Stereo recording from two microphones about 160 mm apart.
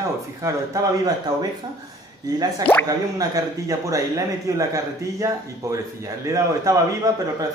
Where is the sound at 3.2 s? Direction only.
20° right (ahead or behind).